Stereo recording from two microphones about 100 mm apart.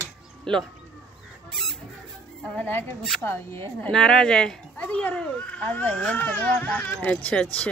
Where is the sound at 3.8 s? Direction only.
5° left (ahead or behind).